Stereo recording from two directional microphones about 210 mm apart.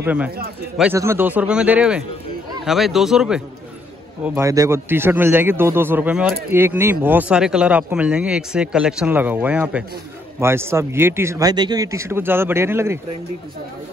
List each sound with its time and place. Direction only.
0.0 s speech: 5° right (ahead or behind)
4.2 s speech: 15° right (ahead or behind)